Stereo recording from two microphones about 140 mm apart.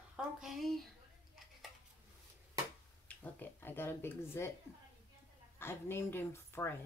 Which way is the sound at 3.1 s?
15° left (ahead or behind).